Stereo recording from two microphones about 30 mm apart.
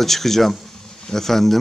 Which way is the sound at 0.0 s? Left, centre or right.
Centre.